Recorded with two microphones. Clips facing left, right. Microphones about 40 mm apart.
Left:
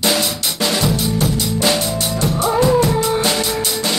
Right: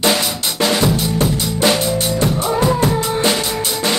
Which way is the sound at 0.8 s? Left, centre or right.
Centre.